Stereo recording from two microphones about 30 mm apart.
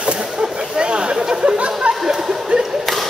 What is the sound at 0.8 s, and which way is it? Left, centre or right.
Speech, right.